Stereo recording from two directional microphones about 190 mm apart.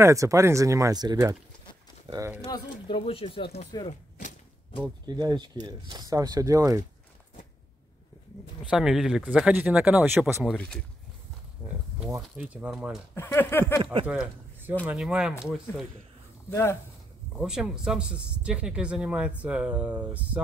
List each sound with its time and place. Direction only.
0.0 s speech: 15° right (ahead or behind)
2.4 s speech: 20° left (ahead or behind)
5.0 s speech: 20° right (ahead or behind)
8.6 s speech: 5° right (ahead or behind)
10.5 s speech: 5° left (ahead or behind)
12.2 s speech: 5° right (ahead or behind)
13.1 s speech: 10° left (ahead or behind)
14.0 s a man's voice: 10° right (ahead or behind)
16.4 s speech: 10° left (ahead or behind)
17.4 s speech: 5° right (ahead or behind)